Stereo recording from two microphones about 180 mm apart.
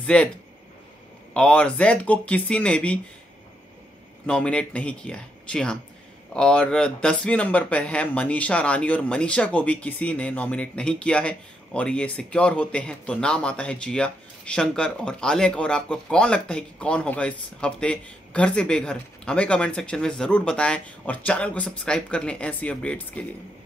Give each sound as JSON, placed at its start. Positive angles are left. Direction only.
{"t": 0.0, "sound": "speech", "side_deg": 5}
{"t": 1.3, "sound": "speech", "side_deg": 5}
{"t": 4.3, "sound": "speech", "side_deg": 5}